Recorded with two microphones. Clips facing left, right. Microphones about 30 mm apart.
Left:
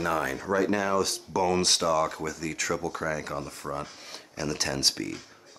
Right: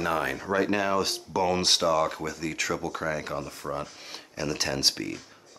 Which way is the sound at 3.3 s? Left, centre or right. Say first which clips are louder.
Right 1 dB; centre.